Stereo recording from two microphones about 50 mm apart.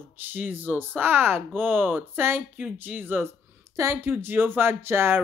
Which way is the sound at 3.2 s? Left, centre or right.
Right.